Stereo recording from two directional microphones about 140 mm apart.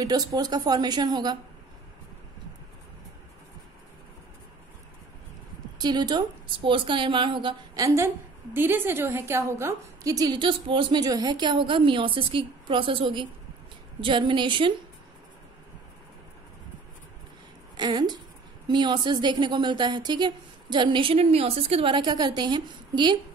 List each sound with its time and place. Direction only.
0.0 s a woman's voice: 30° right (ahead or behind)
5.8 s a woman's voice: 30° right (ahead or behind)
7.8 s a woman's voice: 20° right (ahead or behind); by 14.7 s 35° right (ahead or behind)
17.7 s a woman's voice: 30° right (ahead or behind)